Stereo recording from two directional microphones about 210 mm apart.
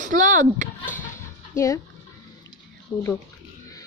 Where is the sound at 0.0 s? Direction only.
35° right (ahead or behind).